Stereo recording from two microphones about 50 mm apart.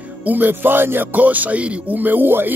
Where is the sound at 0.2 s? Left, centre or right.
Right.